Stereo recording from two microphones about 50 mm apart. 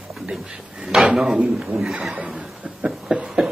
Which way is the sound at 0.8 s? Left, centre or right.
Centre.